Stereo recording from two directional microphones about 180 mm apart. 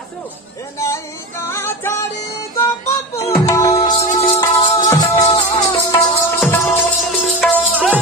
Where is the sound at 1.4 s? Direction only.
15° left (ahead or behind).